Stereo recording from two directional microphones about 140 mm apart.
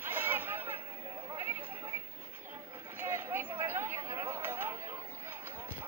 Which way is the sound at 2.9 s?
15° right (ahead or behind).